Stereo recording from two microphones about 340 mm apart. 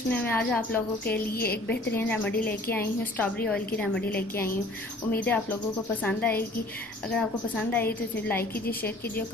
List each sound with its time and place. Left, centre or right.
0.1 s a woman's voice: centre
1.3 s a woman's voice: left
1.7 s a woman's voice: centre